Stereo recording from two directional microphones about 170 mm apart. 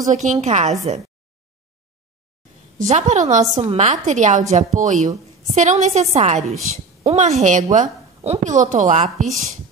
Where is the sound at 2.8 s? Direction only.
45° right (ahead or behind).